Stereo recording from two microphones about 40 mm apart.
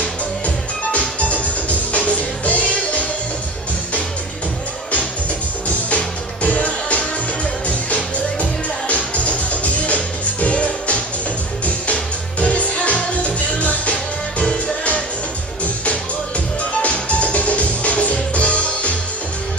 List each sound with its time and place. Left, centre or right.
0.9 s music: left
5.9 s music: left
16.8 s music: left